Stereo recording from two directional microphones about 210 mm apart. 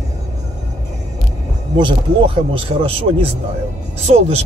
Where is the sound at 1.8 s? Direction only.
25° right (ahead or behind).